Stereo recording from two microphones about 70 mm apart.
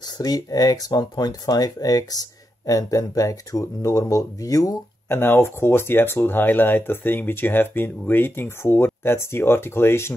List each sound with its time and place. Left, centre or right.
0.2 s speech: left
5.1 s speech: left